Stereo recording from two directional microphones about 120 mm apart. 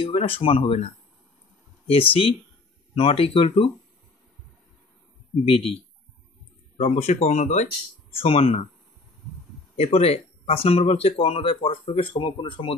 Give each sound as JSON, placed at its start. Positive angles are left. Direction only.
{"t": 0.0, "sound": "speech", "side_deg": 50}
{"t": 5.4, "sound": "speech", "side_deg": 50}
{"t": 6.8, "sound": "speech", "side_deg": 60}
{"t": 8.1, "sound": "speech", "side_deg": 50}
{"t": 9.8, "sound": "speech", "side_deg": 55}